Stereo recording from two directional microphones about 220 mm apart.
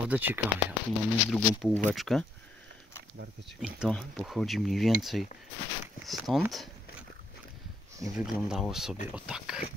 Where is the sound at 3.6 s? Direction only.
Centre (ahead or behind).